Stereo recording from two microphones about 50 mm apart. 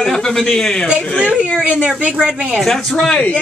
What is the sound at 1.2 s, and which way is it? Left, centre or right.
Speech, right.